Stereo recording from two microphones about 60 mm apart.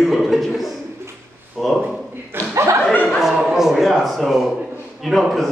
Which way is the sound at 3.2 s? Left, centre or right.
Centre.